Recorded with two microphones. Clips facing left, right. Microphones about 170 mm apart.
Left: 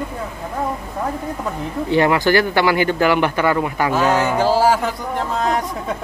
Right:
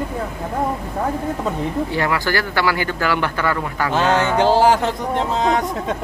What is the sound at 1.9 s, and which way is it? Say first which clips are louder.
A man's voice: left 5 dB; 20° left (ahead or behind).